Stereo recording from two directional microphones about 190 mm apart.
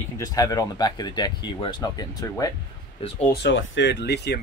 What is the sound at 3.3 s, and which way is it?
Speech, 75° left (ahead or behind).